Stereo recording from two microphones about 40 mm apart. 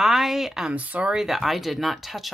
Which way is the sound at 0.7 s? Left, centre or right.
Right.